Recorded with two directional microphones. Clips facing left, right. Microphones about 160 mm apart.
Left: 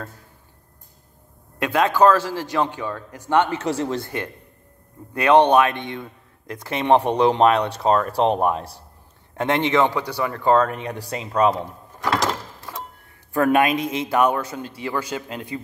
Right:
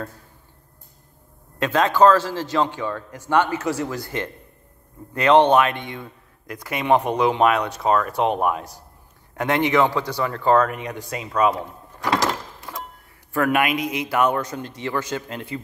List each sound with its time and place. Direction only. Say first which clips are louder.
1.6 s a man's voice: right 1 dB; 10° left (ahead or behind); by 4.1 s 30° left (ahead or behind)
5.1 s a man's voice: even; 15° left (ahead or behind)
10.7 s speech: left 1 dB; 30° left (ahead or behind)
13.4 s a man's voice: left 3 dB; 25° left (ahead or behind)